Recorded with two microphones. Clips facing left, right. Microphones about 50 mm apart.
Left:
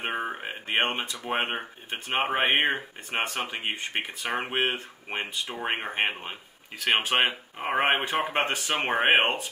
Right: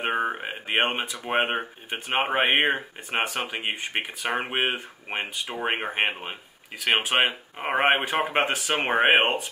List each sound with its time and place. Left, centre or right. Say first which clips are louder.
0.0 s speech: right 4 dB; centre